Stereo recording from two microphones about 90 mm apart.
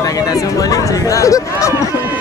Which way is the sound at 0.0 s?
40° left (ahead or behind).